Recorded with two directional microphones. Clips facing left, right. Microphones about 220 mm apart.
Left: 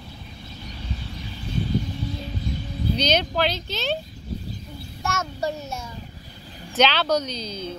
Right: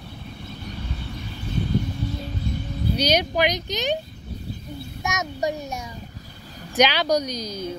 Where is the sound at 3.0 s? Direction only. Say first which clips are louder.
Right 2 dB; 10° right (ahead or behind).